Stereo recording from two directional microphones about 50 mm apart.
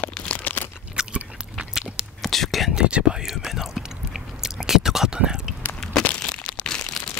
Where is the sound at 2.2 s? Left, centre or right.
Centre.